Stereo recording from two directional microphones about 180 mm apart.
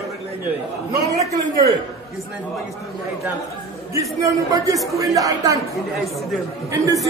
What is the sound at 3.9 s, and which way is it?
A man's voice, 20° right (ahead or behind).